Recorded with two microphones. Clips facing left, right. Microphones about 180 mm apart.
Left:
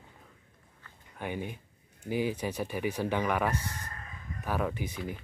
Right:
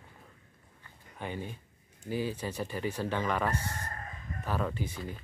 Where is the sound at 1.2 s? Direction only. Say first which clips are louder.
Left 2 dB; 15° left (ahead or behind).